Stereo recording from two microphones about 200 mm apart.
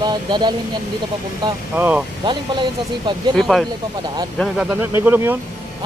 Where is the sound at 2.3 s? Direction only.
25° right (ahead or behind).